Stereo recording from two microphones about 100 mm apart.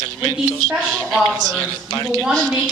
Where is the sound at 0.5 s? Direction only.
5° left (ahead or behind).